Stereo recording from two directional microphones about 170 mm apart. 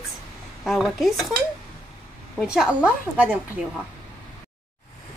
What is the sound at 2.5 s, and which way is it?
Speech, 5° right (ahead or behind).